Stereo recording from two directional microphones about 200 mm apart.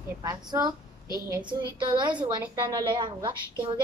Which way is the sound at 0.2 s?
20° right (ahead or behind).